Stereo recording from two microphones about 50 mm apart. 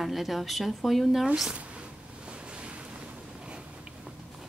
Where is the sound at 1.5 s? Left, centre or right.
Right.